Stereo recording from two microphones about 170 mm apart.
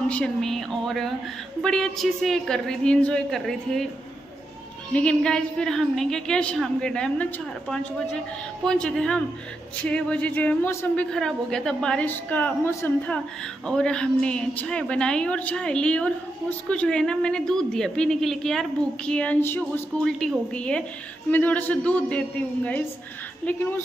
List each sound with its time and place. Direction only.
0.1 s a woman's voice: 5° left (ahead or behind)
4.9 s a woman's voice: 5° left (ahead or behind)